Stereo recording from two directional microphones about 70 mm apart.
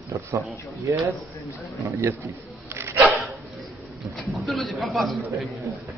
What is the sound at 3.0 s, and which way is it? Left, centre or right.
Dog, centre.